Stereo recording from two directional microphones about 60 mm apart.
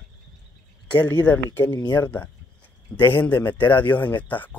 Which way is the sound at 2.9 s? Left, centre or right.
Left.